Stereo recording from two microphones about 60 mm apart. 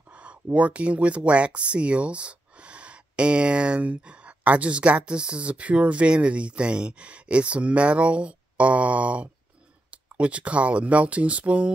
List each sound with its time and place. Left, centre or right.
0.1 s speech: right